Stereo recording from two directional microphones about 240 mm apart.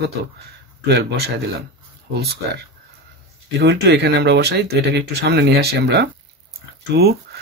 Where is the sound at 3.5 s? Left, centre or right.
Right.